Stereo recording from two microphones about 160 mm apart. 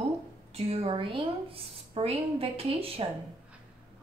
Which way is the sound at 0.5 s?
40° right (ahead or behind).